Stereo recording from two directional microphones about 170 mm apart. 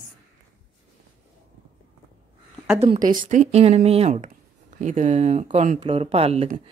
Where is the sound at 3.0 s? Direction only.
50° right (ahead or behind).